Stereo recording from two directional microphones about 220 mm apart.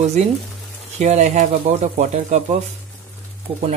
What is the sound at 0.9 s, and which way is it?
Speech, 30° right (ahead or behind).